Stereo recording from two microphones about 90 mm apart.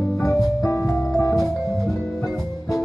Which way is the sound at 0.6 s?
30° left (ahead or behind).